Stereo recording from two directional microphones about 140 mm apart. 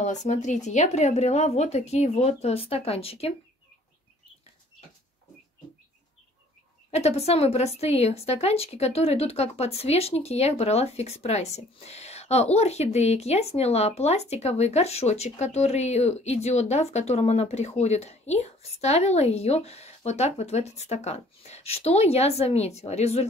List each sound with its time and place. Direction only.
0.0 s speech: 60° left (ahead or behind)
6.9 s speech: 50° left (ahead or behind)